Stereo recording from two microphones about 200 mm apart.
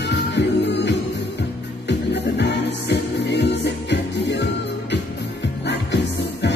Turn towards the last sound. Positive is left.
turn(degrees=60)  # may be behind; listen again after turning